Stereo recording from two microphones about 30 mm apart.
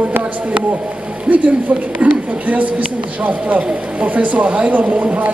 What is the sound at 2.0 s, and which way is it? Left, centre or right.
A woman's voice, right.